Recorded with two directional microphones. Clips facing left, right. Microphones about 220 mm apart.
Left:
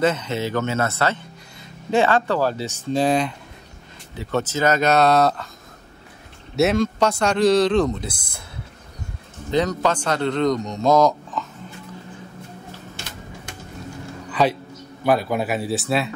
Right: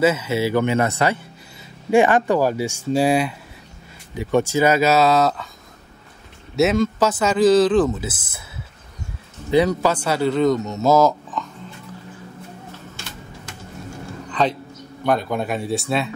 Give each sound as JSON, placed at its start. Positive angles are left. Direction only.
{"t": 0.0, "sound": "speech", "side_deg": -5}
{"t": 6.5, "sound": "speech", "side_deg": 0}
{"t": 9.5, "sound": "speech", "side_deg": -10}
{"t": 14.4, "sound": "a man's voice", "side_deg": 10}